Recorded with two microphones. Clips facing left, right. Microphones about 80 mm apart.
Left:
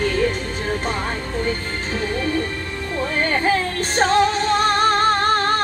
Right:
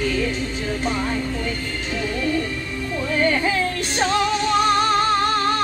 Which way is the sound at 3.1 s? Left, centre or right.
Left.